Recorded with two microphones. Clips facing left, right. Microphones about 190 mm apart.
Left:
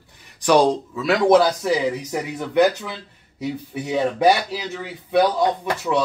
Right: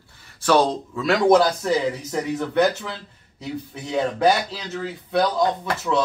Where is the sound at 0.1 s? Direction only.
15° left (ahead or behind).